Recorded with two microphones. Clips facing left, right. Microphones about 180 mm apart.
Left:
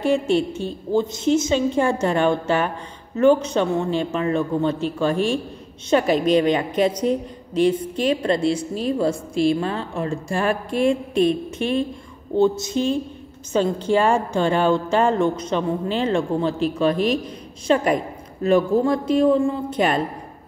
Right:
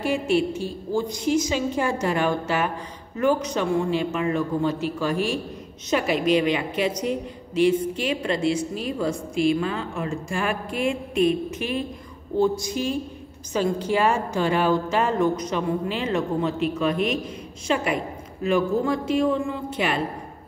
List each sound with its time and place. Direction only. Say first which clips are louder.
0.5 s a man's voice: left 3 dB; 25° left (ahead or behind)